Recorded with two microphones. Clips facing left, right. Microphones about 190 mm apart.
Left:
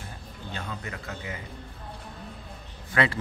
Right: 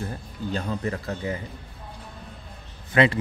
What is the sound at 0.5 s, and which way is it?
Speech, 35° right (ahead or behind).